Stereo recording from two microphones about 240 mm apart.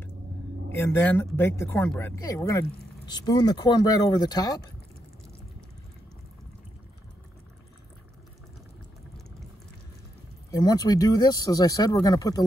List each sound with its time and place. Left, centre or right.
0.7 s speech: centre
10.5 s speech: centre